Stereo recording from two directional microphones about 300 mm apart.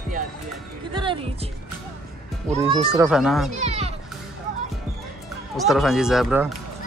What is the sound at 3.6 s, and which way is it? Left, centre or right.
Music, right.